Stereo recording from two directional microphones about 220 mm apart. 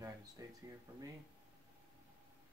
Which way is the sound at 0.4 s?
15° right (ahead or behind).